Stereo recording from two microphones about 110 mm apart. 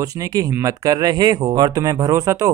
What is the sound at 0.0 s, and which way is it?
Speech, 35° right (ahead or behind).